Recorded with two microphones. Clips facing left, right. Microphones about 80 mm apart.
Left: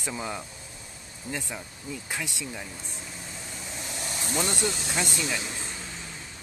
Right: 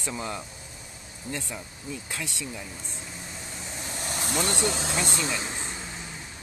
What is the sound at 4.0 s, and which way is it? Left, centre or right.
Vehicle, right.